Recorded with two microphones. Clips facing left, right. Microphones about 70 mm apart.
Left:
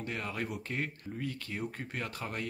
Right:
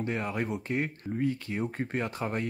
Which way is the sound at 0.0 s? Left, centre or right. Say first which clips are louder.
Right 6 dB; right.